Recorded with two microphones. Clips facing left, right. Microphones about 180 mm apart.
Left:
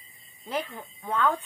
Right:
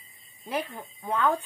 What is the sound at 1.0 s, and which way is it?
Speech, 20° right (ahead or behind).